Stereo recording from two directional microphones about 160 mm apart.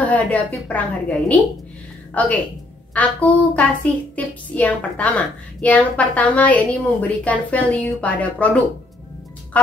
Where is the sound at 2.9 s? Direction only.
10° left (ahead or behind).